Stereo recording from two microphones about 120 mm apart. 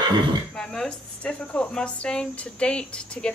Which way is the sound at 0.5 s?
5° left (ahead or behind).